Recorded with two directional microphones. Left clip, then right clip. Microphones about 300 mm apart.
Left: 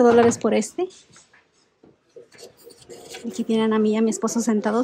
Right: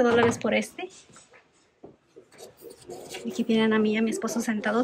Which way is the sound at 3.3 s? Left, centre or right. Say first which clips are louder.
Left 2 dB; centre.